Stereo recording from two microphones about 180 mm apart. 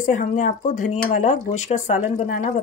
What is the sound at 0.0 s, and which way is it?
Speech, 45° left (ahead or behind).